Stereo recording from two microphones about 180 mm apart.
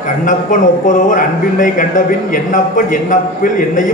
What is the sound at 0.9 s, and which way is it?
A man's voice, 45° left (ahead or behind).